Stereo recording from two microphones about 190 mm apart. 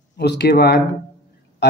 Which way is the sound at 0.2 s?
60° left (ahead or behind).